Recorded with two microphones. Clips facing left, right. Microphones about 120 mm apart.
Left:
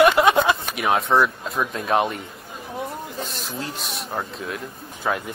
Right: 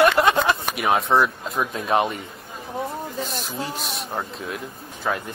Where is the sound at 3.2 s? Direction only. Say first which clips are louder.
Right 3 dB; 55° right (ahead or behind).